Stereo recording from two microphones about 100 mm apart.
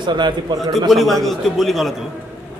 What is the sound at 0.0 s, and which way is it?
Speech, 50° right (ahead or behind).